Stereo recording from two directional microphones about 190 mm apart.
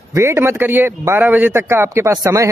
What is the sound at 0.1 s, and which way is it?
Speech, 15° right (ahead or behind).